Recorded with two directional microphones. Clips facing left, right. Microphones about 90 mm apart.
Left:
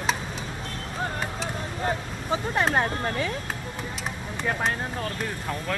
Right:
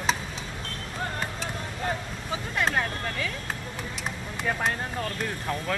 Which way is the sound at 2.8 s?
30° left (ahead or behind).